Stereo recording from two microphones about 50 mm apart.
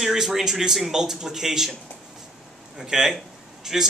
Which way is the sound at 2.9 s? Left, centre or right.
Centre.